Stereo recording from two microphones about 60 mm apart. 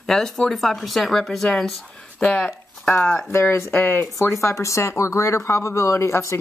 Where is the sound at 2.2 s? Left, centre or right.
Left.